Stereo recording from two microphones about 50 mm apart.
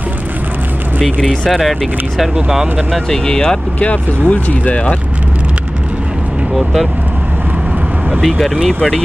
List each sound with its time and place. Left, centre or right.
1.5 s speech: centre
2.9 s speech: centre
4.3 s speech: left
6.5 s speech: centre
8.2 s speech: centre